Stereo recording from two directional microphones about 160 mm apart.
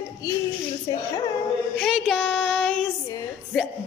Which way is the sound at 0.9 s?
25° left (ahead or behind).